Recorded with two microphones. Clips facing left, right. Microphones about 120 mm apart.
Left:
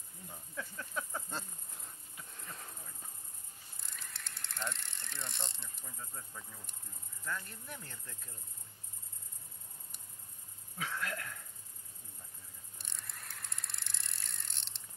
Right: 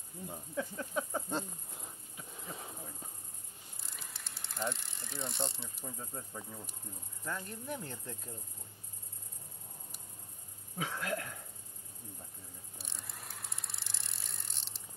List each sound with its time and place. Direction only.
0.3 s snake: 25° right (ahead or behind)
2.3 s a sound: centre (ahead or behind)
3.8 s bicycle: centre (ahead or behind)
5.9 s speech: 30° right (ahead or behind)
10.8 s a sound: 25° right (ahead or behind)
12.7 s bicycle: centre (ahead or behind)